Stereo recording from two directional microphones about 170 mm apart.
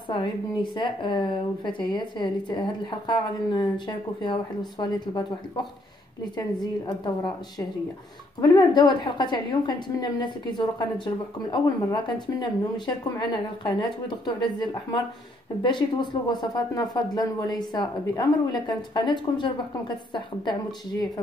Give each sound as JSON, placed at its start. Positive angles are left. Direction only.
{"t": 0.1, "sound": "a woman's voice", "side_deg": 30}
{"t": 6.3, "sound": "a woman's voice", "side_deg": 25}
{"t": 8.4, "sound": "a woman's voice", "side_deg": 25}